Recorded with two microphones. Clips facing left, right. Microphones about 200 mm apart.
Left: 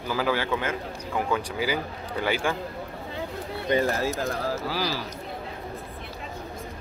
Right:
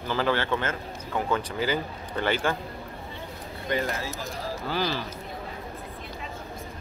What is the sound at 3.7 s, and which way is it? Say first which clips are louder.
Speech: left 4 dB; 25° left (ahead or behind).